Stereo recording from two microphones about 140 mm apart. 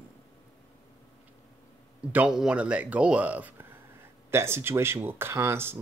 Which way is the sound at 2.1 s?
5° right (ahead or behind).